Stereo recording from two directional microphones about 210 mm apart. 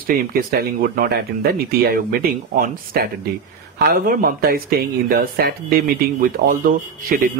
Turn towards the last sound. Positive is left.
turn(degrees=-40)  # may be behind; listen again after turning